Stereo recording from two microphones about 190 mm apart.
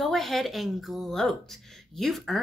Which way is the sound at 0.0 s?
Centre (ahead or behind).